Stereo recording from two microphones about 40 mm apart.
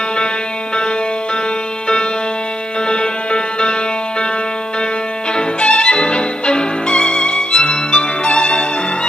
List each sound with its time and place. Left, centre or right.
2.9 s music: left
5.3 s violin: left